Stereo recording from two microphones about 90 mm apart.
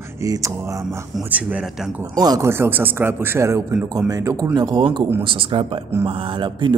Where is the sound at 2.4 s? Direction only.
25° right (ahead or behind).